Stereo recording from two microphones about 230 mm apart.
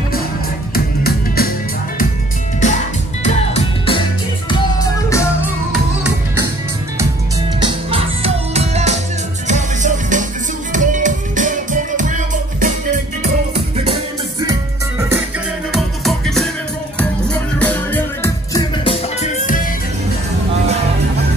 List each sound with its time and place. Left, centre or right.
0.7 s music: left
3.3 s music: left
4.5 s music: centre
7.6 s music: right
15.7 s music: centre
19.2 s music: left